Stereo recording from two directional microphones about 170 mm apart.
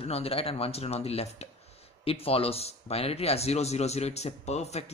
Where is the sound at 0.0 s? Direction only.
35° left (ahead or behind).